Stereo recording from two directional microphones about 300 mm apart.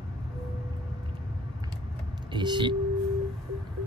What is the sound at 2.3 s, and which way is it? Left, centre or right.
Speech, centre.